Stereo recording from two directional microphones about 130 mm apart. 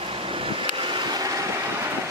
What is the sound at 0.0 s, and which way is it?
Vehicle, 45° right (ahead or behind).